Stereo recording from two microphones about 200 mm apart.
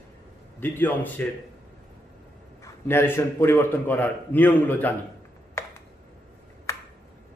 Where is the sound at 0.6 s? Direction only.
10° left (ahead or behind).